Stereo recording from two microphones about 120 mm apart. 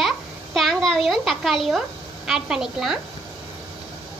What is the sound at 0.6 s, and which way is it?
A child's voice, 5° left (ahead or behind).